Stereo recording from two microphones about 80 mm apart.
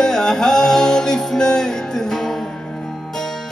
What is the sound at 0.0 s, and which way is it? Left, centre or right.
Music, centre.